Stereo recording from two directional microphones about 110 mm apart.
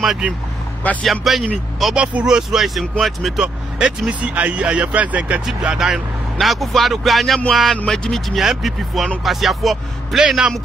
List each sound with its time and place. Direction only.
0.0 s speech: 5° right (ahead or behind)